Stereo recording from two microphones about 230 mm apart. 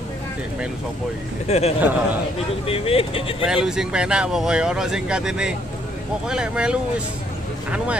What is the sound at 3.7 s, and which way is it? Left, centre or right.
Speech, centre.